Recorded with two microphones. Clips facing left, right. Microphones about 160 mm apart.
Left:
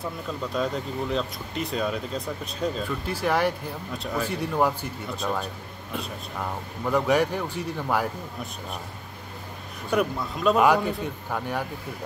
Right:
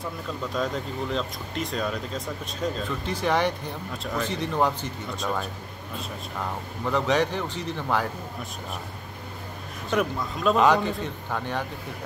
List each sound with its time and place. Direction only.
0.5 s speech: centre (ahead or behind)
6.9 s a man's voice: 10° left (ahead or behind)
9.8 s a man's voice: centre (ahead or behind)